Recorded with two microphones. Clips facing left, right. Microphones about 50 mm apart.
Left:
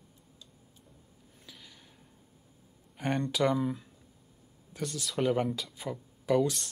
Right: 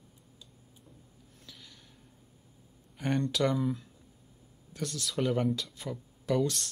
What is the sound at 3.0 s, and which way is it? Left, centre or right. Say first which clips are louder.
Speech: even; centre.